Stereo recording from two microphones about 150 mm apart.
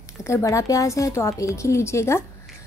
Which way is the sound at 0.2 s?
20° left (ahead or behind).